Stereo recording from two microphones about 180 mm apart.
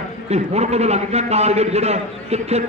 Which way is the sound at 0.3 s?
35° right (ahead or behind).